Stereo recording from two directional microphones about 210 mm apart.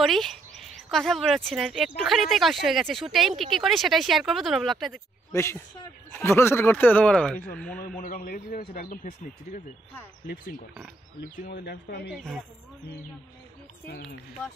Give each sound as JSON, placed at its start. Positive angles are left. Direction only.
{"t": 0.0, "sound": "speech", "side_deg": 0}
{"t": 5.3, "sound": "speech", "side_deg": 10}
{"t": 8.0, "sound": "a man's voice", "side_deg": 40}
{"t": 10.2, "sound": "a man's voice", "side_deg": 40}
{"t": 12.2, "sound": "speech", "side_deg": 0}